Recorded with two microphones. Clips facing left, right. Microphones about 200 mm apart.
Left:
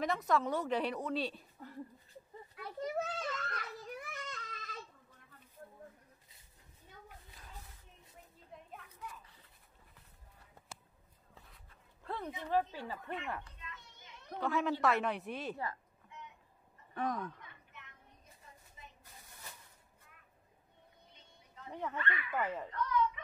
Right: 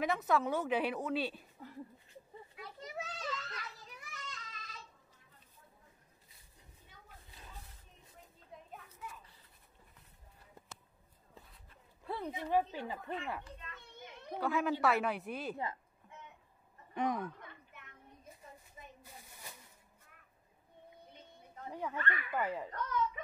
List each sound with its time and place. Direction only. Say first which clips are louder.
0.0 s a woman's voice: right 1 dB; 5° right (ahead or behind)
2.8 s children playing: left 7 dB; 50° left (ahead or behind)
12.0 s a sound: right 1 dB; 10° right (ahead or behind)
12.4 s speech: right 1 dB; 15° right (ahead or behind)
13.7 s children playing: right 6 dB; 55° right (ahead or behind)
14.3 s a woman's voice: even; centre (ahead or behind)
15.5 s a woman's voice: right 1 dB; 20° right (ahead or behind)
16.9 s speech: right 2 dB; 15° right (ahead or behind)
21.9 s speech: even; 45° right (ahead or behind)
22.3 s speech: right 1 dB; 10° right (ahead or behind)
22.7 s a sound: left 3 dB; 40° right (ahead or behind)